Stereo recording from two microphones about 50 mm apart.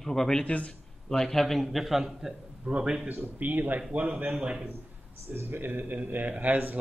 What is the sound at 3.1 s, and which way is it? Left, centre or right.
A man's voice, right.